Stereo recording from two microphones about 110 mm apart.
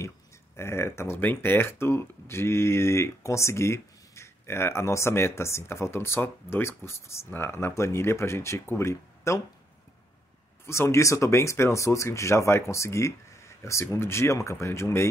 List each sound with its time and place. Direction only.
0.6 s speech: 25° left (ahead or behind)
10.7 s speech: 25° left (ahead or behind)